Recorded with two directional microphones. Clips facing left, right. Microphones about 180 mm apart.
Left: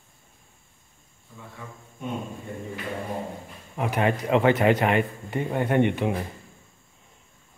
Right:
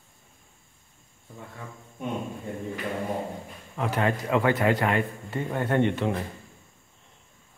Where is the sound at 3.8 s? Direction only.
15° left (ahead or behind).